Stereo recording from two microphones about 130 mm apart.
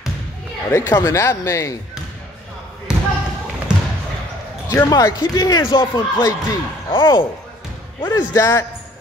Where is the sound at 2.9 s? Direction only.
5° right (ahead or behind).